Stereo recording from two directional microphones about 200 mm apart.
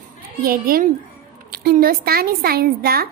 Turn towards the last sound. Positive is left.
turn(degrees=-50)  # may be behind; listen again after turning